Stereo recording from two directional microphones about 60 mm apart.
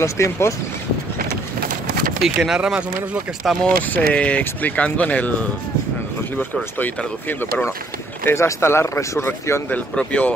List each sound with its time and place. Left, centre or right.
0.0 s speech: left
2.2 s speech: centre
3.6 s speech: left
8.3 s speech: left
9.9 s speech: left